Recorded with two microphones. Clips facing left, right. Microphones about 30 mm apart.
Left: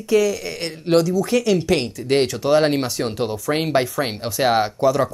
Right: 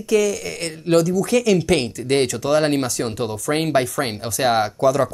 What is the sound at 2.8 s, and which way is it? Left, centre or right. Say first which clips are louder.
Speech: even; left.